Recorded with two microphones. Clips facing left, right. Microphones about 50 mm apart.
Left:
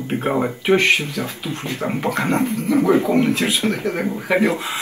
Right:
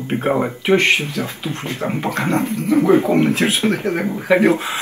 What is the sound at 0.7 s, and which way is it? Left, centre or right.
Speech, right.